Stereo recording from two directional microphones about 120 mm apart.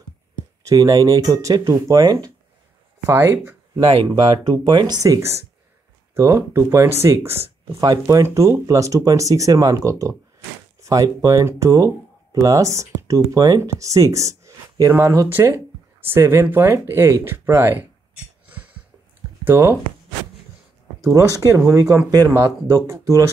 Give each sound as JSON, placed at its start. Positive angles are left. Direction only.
{"t": 0.7, "sound": "speech", "side_deg": -30}
{"t": 3.1, "sound": "speech", "side_deg": -20}
{"t": 4.6, "sound": "speech", "side_deg": -35}
{"t": 5.0, "sound": "speech", "side_deg": -25}
{"t": 19.4, "sound": "speech", "side_deg": -20}
{"t": 21.0, "sound": "speech", "side_deg": -25}